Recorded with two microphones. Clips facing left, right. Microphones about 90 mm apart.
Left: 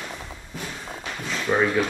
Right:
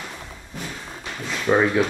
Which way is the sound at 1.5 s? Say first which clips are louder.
Right 4 dB; 30° right (ahead or behind).